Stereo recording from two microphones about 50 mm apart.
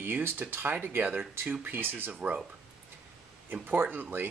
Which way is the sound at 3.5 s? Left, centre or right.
Right.